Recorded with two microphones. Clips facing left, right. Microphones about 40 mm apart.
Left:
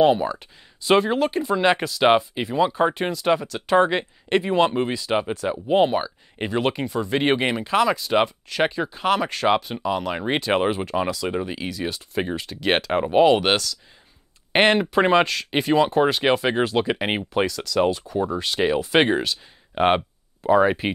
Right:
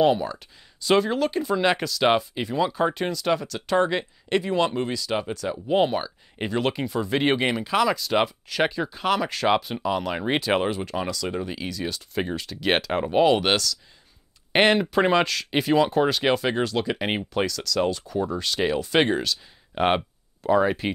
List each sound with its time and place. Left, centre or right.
0.0 s speech: centre